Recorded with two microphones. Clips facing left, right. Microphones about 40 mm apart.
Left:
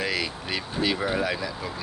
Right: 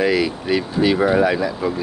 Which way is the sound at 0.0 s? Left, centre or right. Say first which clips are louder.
Right 10 dB; centre.